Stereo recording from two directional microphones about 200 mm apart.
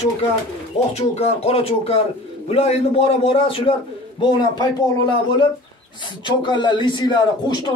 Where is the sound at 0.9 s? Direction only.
30° left (ahead or behind).